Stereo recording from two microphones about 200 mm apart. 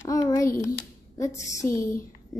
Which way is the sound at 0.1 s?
15° left (ahead or behind).